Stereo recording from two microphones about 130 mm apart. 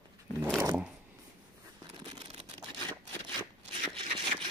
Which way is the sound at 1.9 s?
40° right (ahead or behind).